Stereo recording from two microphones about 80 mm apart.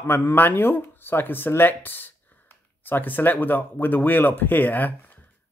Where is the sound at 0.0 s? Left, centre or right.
Left.